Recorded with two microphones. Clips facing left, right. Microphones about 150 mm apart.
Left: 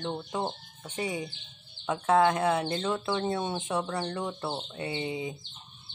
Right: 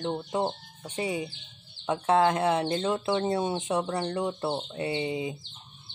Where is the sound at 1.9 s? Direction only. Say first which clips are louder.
Right 1 dB; 25° right (ahead or behind).